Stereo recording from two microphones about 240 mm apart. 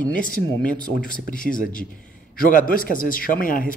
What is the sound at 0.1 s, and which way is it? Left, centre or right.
A man's voice, left.